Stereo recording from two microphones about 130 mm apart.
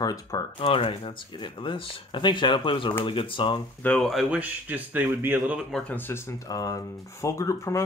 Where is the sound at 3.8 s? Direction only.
10° left (ahead or behind).